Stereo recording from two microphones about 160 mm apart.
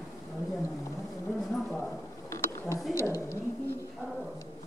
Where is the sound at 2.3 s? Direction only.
20° left (ahead or behind).